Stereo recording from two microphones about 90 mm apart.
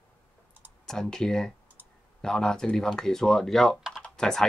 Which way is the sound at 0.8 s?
5° left (ahead or behind).